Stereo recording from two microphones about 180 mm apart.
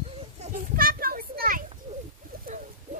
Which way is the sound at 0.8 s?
55° right (ahead or behind).